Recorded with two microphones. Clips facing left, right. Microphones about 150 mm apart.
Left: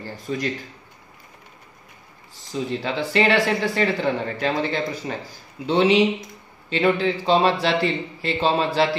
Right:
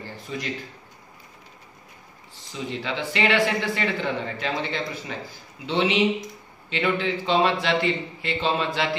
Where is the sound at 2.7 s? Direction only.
40° left (ahead or behind).